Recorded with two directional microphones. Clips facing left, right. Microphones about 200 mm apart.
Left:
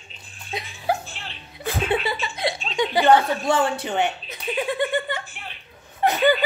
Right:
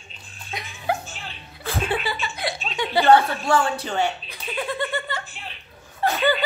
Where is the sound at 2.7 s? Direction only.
15° left (ahead or behind).